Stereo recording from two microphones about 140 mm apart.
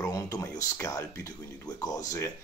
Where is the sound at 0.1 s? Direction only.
25° left (ahead or behind).